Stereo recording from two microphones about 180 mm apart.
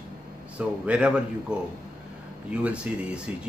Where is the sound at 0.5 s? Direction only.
5° right (ahead or behind).